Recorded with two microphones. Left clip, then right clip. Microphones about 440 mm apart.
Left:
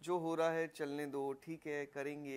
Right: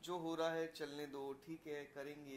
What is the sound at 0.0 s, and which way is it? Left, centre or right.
Speech, left.